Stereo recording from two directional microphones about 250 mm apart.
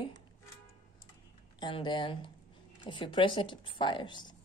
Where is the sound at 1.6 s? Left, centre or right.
Centre.